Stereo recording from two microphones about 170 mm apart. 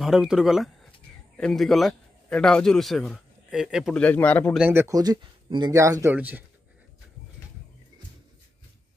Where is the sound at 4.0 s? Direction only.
10° left (ahead or behind).